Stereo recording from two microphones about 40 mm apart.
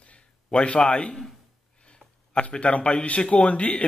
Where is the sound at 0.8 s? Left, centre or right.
Left.